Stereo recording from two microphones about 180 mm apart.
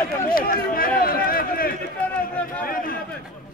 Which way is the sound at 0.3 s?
55° left (ahead or behind).